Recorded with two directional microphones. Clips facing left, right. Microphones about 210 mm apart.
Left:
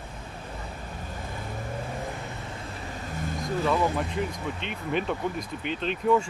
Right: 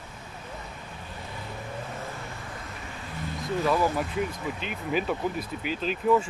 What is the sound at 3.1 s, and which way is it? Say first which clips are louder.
Vehicle: left 2 dB; 45° left (ahead or behind).